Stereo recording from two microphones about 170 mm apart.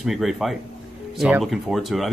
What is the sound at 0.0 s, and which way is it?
Speech, centre (ahead or behind).